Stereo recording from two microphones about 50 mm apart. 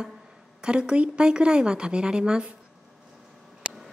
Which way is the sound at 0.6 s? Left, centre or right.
Centre.